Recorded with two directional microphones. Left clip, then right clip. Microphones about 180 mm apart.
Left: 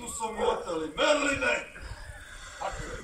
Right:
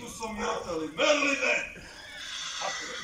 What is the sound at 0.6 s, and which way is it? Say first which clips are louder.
Speech: even; 10° right (ahead or behind).